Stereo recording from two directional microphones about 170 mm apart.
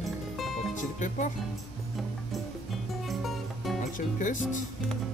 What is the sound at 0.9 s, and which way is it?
Speech, 50° left (ahead or behind).